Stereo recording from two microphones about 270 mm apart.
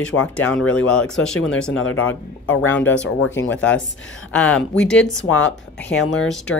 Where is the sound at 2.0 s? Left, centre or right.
Centre.